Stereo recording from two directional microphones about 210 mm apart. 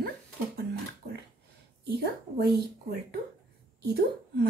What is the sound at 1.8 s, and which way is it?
A woman's voice, 50° right (ahead or behind).